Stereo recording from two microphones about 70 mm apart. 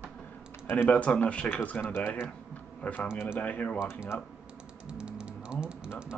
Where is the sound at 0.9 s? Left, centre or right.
Centre.